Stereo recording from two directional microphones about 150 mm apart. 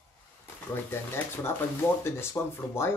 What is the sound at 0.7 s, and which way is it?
Speech, 15° left (ahead or behind).